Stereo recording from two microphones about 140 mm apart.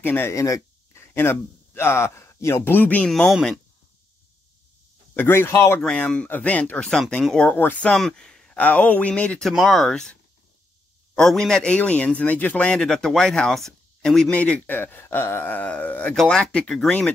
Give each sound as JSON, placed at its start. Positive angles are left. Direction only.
{"t": 0.0, "sound": "a man's voice", "side_deg": 15}
{"t": 5.1, "sound": "a man's voice", "side_deg": 15}
{"t": 5.8, "sound": "a man's voice", "side_deg": 5}
{"t": 11.1, "sound": "a man's voice", "side_deg": 5}